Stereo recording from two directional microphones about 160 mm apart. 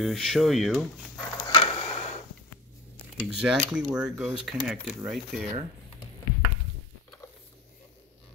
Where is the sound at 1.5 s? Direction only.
30° left (ahead or behind).